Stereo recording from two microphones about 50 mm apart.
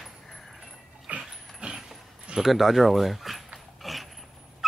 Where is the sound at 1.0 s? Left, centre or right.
Right.